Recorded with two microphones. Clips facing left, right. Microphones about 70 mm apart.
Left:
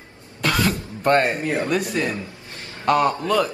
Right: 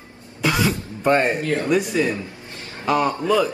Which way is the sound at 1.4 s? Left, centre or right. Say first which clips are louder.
Right 1 dB; left.